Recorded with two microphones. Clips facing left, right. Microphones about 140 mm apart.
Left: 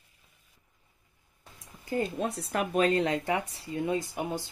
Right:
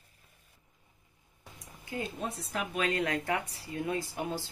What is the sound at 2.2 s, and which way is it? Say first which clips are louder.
Speech: left 5 dB; 85° left.